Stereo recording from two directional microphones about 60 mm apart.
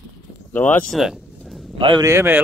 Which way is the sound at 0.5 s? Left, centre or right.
Left.